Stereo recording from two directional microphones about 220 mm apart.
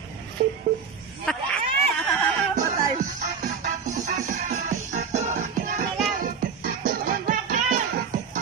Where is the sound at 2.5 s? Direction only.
35° right (ahead or behind).